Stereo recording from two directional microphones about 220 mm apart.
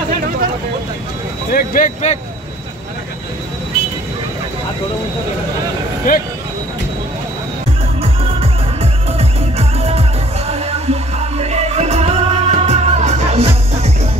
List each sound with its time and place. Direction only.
1.5 s speech: 40° left (ahead or behind)
6.1 s speech: 40° left (ahead or behind)
8.0 s music: 25° right (ahead or behind)